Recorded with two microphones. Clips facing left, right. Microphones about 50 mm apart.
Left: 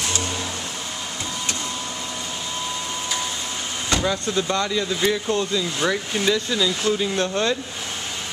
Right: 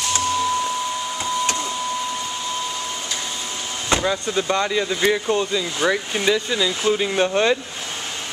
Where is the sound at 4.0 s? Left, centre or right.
Centre.